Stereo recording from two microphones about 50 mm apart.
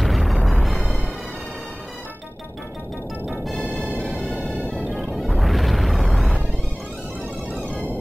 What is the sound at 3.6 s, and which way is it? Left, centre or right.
Music, left.